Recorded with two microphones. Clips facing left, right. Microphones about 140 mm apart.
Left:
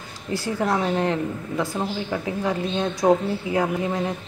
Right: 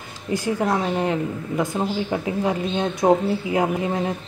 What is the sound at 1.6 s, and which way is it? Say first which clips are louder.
A woman's voice: right 3 dB; 20° right (ahead or behind).